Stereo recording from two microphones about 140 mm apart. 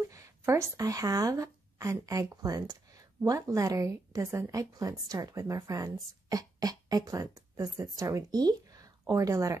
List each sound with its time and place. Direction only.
0.1 s speech: 20° right (ahead or behind)